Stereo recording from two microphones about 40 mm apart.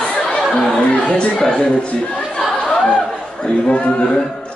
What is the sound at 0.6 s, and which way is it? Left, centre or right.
Speech, centre.